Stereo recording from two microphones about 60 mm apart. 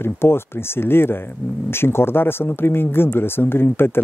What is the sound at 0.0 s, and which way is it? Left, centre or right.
Speech, left.